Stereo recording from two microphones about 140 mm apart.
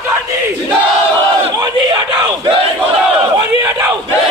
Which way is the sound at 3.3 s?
20° right (ahead or behind).